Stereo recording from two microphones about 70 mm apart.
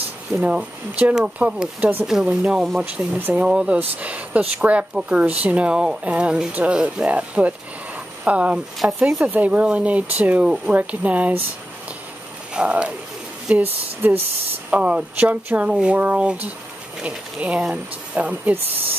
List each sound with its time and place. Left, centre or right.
0.4 s speech: centre
12.5 s speech: centre
13.6 s speech: right
14.7 s speech: centre